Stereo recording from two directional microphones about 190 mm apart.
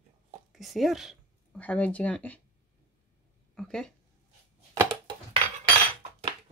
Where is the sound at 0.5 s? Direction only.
Centre (ahead or behind).